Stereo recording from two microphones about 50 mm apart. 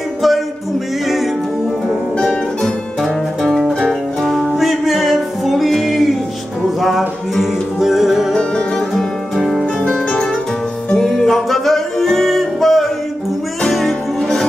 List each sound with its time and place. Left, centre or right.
2.1 s music: centre
3.4 s music: centre
8.3 s music: centre
8.9 s music: centre
11.0 s music: centre